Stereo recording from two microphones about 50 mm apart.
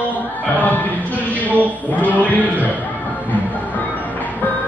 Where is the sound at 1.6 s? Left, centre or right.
Left.